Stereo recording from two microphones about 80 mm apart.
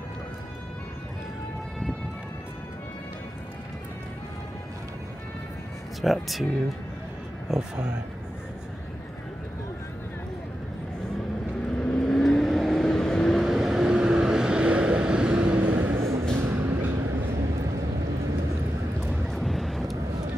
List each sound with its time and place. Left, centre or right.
5.9 s speech: centre
7.4 s speech: centre
11.7 s vehicle: centre; by 16.0 s right
16.0 s a sound: right
16.3 s vehicle: right
19.3 s vehicle: centre